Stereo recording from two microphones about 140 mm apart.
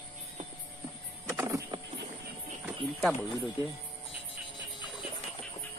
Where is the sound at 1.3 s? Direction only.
25° right (ahead or behind).